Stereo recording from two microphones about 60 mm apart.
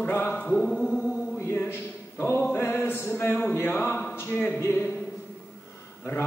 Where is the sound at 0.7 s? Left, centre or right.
Centre.